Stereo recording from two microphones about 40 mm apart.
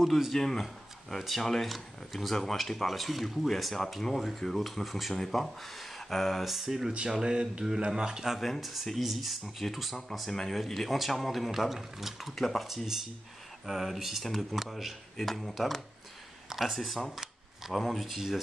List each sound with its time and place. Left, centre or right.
0.0 s speech: centre
7.2 s a sound: centre
7.8 s speech: centre
8.4 s speech: centre
10.3 s speech: centre
16.4 s a sound: centre
16.7 s speech: centre